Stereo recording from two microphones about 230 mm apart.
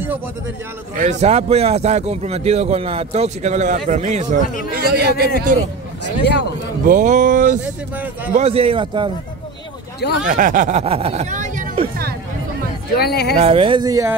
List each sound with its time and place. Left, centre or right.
0.9 s speech: right
4.7 s a man's voice: right
6.0 s speech: left
6.9 s speech: right
9.9 s speech: left
10.2 s speech: right
12.9 s speech: left
13.4 s speech: right